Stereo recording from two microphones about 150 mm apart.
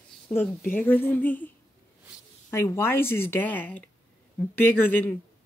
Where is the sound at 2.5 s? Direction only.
15° left (ahead or behind).